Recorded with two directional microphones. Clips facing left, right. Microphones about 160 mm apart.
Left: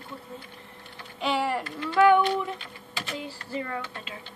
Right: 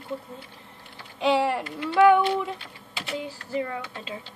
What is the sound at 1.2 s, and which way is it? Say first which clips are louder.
Speech: right 4 dB; 20° right (ahead or behind).